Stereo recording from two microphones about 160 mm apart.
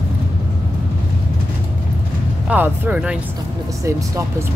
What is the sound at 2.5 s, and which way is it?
Speech, 10° right (ahead or behind).